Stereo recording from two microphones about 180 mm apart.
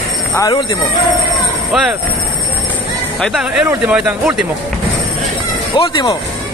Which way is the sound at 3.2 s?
5° right (ahead or behind).